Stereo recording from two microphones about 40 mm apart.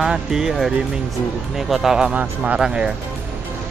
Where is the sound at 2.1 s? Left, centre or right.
Right.